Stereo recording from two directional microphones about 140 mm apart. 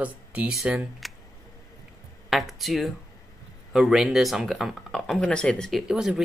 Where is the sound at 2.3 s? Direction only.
Centre (ahead or behind).